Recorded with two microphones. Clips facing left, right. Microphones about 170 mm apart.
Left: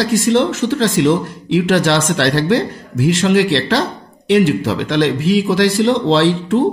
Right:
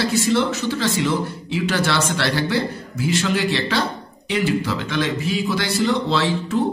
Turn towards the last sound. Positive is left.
turn(degrees=90)